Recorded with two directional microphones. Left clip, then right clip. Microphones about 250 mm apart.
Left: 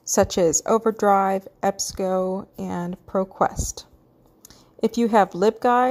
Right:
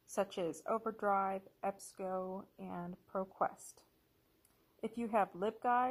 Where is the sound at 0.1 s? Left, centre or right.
Left.